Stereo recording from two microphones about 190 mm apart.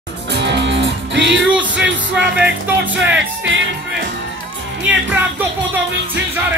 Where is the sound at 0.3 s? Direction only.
65° right (ahead or behind).